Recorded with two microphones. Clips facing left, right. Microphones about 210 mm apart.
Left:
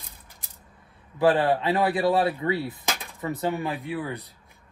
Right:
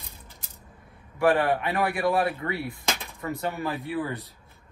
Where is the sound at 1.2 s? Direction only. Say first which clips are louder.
Left 2 dB; 25° left (ahead or behind).